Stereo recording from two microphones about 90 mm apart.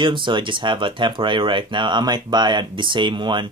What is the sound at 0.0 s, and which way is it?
Speech, 65° right (ahead or behind).